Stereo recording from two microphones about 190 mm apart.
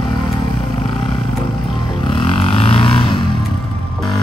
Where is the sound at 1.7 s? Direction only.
25° left (ahead or behind).